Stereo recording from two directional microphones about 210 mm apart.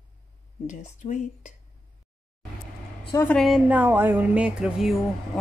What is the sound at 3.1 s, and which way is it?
Speech, 15° left (ahead or behind).